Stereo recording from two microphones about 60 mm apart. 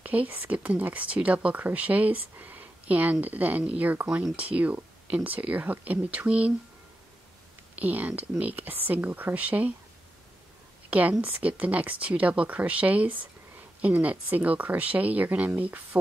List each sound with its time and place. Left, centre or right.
0.0 s speech: right
7.7 s speech: right
10.9 s speech: right